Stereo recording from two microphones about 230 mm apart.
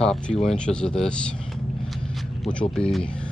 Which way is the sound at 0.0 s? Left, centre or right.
Centre.